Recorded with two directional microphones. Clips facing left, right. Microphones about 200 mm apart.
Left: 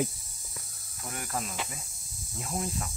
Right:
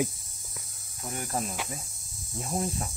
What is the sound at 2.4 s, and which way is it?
Speech, 30° right (ahead or behind).